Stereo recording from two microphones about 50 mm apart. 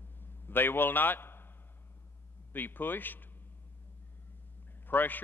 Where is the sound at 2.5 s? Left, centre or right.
Left.